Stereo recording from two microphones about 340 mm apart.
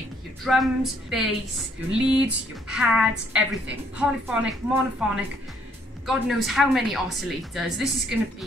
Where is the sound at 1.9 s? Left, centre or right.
Centre.